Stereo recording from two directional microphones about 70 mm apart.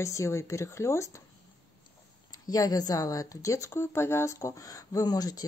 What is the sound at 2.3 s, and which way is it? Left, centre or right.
Speech, left.